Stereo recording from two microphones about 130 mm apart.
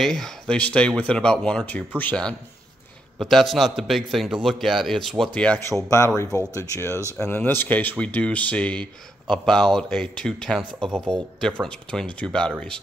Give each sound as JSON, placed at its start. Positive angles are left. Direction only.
{"t": 0.0, "sound": "a man's voice", "side_deg": 5}
{"t": 5.9, "sound": "a man's voice", "side_deg": 20}